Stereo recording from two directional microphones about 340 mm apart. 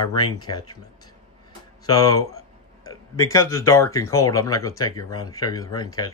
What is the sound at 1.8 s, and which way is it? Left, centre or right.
Speech, centre.